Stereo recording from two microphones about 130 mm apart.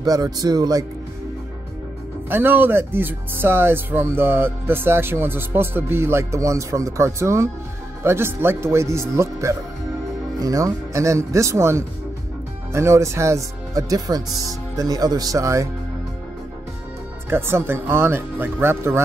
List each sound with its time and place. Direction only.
0.0 s speech: 30° right (ahead or behind)
2.2 s speech: 15° right (ahead or behind)
17.3 s speech: 20° right (ahead or behind)